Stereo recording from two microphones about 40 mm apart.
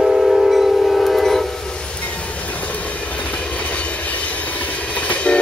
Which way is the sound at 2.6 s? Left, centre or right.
Left.